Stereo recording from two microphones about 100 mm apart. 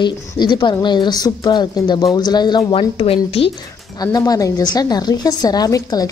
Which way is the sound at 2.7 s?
65° left (ahead or behind).